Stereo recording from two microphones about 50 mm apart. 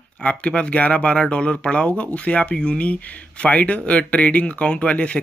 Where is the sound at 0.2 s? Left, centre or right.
Left.